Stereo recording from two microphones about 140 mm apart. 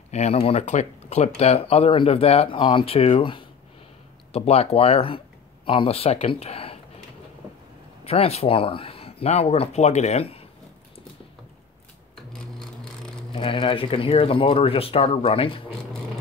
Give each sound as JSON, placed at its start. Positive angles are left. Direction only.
{"t": 0.1, "sound": "speech", "side_deg": 50}
{"t": 8.0, "sound": "speech", "side_deg": 45}
{"t": 12.2, "sound": "a sound", "side_deg": 5}
{"t": 13.3, "sound": "speech", "side_deg": 40}